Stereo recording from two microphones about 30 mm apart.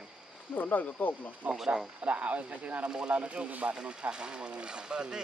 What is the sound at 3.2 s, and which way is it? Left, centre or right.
Speech, right.